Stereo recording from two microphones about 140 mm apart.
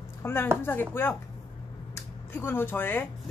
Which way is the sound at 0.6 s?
15° left (ahead or behind).